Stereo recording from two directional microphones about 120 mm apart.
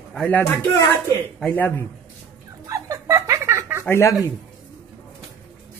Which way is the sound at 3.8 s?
20° left (ahead or behind).